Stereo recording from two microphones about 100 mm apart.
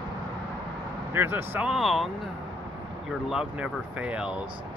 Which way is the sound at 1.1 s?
20° right (ahead or behind).